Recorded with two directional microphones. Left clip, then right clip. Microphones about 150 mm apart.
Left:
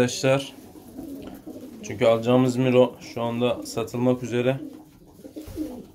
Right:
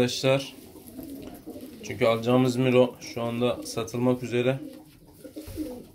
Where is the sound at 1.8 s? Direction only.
10° left (ahead or behind).